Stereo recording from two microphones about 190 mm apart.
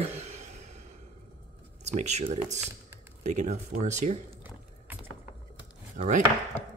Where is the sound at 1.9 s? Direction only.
35° right (ahead or behind).